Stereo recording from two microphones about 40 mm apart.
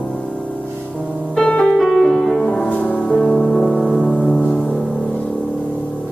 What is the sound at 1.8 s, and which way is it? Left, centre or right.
Music, centre.